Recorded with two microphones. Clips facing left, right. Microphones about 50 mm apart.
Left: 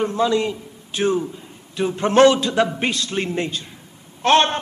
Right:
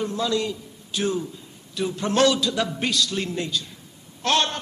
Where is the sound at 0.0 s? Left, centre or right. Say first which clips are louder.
Left 5 dB; left.